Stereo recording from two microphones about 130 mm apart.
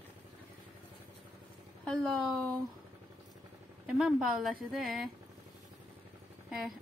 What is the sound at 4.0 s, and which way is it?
A woman's voice, centre (ahead or behind).